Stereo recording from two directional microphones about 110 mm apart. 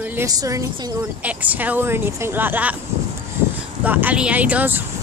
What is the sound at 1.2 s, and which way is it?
Speech, 15° right (ahead or behind).